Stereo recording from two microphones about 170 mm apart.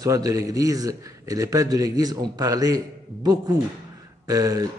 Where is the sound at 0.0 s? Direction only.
20° right (ahead or behind).